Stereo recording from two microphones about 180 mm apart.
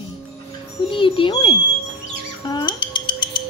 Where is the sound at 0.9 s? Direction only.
30° left (ahead or behind).